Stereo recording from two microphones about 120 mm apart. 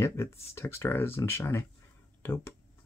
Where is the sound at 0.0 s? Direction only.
20° left (ahead or behind).